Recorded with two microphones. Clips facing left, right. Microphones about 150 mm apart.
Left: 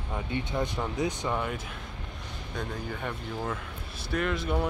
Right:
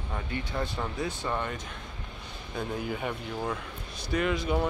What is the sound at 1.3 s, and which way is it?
Speech, 5° left (ahead or behind).